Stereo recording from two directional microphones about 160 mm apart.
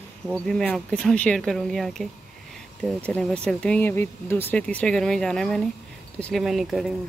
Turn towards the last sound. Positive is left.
turn(degrees=0)  # may be behind; listen again after turning